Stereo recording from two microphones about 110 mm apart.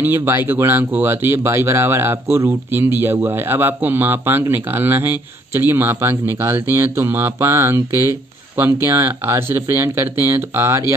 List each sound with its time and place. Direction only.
0.0 s speech: 20° right (ahead or behind)